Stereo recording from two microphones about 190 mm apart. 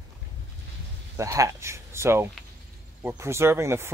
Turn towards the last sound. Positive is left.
turn(degrees=-15)  # may be behind; listen again after turning